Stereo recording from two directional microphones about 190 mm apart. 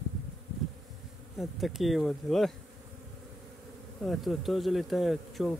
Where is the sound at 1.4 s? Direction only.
Centre (ahead or behind).